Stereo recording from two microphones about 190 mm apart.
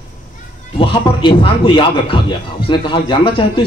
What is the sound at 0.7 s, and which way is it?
A man's voice, 25° left (ahead or behind).